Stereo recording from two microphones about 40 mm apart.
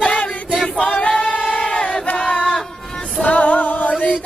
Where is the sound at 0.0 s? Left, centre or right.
Left.